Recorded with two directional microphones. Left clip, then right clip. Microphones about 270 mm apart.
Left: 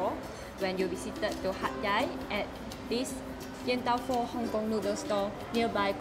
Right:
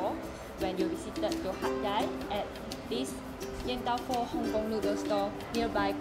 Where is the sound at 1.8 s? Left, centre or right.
Centre.